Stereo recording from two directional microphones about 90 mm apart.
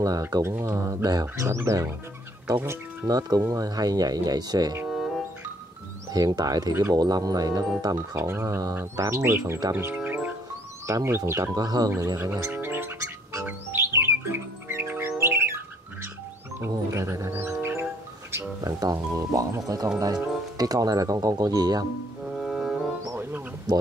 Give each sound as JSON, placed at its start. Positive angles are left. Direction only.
{"t": 0.0, "sound": "speech", "side_deg": -45}
{"t": 1.2, "sound": "speech", "side_deg": -30}
{"t": 3.1, "sound": "speech", "side_deg": -45}
{"t": 4.8, "sound": "music", "side_deg": 0}
{"t": 6.1, "sound": "speech", "side_deg": -45}
{"t": 7.0, "sound": "speech", "side_deg": -45}
{"t": 8.2, "sound": "speech", "side_deg": -30}
{"t": 9.8, "sound": "music", "side_deg": -20}
{"t": 10.9, "sound": "speech", "side_deg": -30}
{"t": 11.5, "sound": "speech", "side_deg": -45}
{"t": 12.5, "sound": "music", "side_deg": -25}
{"t": 18.3, "sound": "speech", "side_deg": -40}
{"t": 22.4, "sound": "music", "side_deg": 0}